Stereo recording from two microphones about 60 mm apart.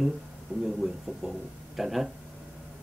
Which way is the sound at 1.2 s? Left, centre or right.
Centre.